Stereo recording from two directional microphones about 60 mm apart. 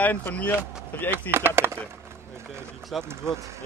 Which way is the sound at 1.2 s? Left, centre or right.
Right.